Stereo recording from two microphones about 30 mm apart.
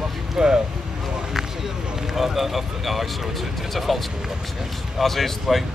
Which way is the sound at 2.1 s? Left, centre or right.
Centre.